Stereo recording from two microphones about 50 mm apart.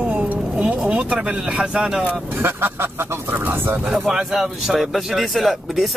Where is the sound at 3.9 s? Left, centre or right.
Centre.